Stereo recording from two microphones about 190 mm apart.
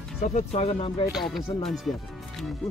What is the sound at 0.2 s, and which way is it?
Speech, 40° left (ahead or behind).